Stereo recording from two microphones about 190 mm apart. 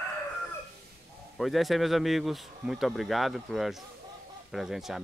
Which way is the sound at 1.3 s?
Centre (ahead or behind).